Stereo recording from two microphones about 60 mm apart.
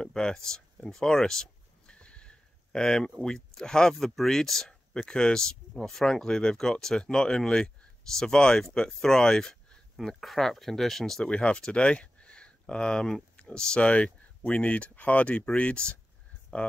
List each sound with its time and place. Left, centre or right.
0.0 s a sound: centre
3.2 s speech: centre
11.3 s speech: centre